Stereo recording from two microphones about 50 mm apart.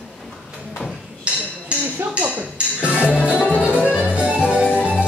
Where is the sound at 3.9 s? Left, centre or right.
Right.